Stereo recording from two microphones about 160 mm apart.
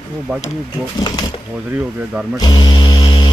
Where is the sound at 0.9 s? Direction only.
25° left (ahead or behind).